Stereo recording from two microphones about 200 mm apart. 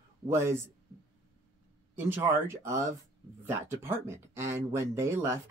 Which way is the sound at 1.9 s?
10° right (ahead or behind).